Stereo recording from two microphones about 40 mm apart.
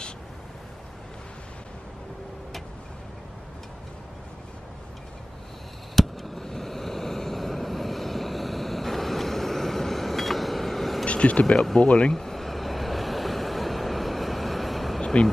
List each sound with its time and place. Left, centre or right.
5.9 s vehicle: centre
11.1 s vehicle: left
11.5 s speech: centre
12.1 s waves: centre
15.0 s vehicle: centre